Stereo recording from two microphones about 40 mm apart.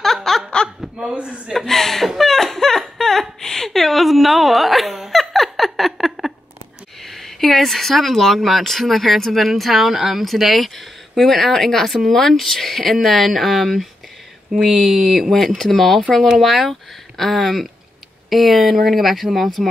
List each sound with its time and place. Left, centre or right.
0.0 s laughter: centre
0.9 s speech: right
1.7 s chuckle: centre
3.0 s a sound: centre
7.0 s speech: centre